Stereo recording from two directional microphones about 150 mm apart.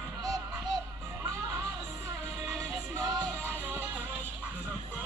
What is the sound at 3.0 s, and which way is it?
Music, 25° right (ahead or behind).